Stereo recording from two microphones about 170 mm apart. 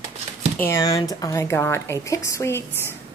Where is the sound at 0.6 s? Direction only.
20° left (ahead or behind).